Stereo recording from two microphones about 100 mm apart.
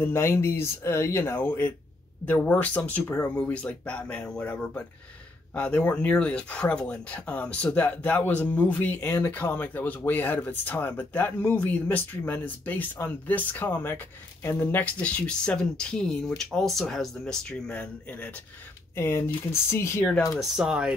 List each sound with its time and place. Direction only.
0.0 s speech: 25° left (ahead or behind)
20.5 s speech: 5° right (ahead or behind)